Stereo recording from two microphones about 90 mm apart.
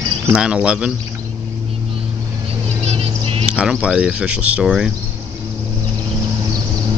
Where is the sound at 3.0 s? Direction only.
90° right.